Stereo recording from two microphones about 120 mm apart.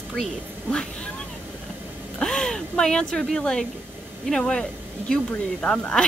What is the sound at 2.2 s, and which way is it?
Speech, 5° left (ahead or behind).